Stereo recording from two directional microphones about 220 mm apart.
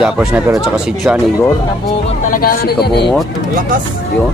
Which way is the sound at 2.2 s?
40° left (ahead or behind).